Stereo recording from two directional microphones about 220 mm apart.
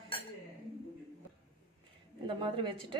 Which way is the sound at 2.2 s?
20° right (ahead or behind).